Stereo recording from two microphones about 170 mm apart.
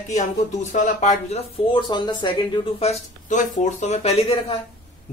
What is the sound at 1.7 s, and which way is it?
Speech, 30° left (ahead or behind).